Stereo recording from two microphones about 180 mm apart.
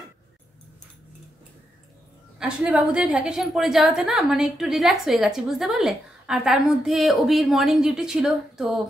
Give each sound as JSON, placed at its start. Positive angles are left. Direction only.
{"t": 2.3, "sound": "a woman's voice", "side_deg": -5}